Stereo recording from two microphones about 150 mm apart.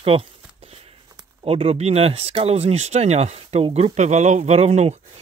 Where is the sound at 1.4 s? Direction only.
40° right (ahead or behind).